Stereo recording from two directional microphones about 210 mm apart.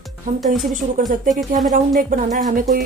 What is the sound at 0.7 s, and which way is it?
Speech, 40° right (ahead or behind).